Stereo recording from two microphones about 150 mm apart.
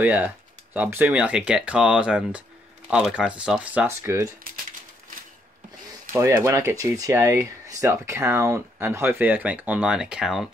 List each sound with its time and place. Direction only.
0.0 s speech: 10° right (ahead or behind)
6.1 s speech: 20° right (ahead or behind); by 10.5 s 5° right (ahead or behind)